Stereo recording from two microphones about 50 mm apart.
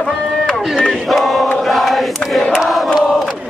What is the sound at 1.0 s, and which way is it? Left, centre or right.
Chant, centre.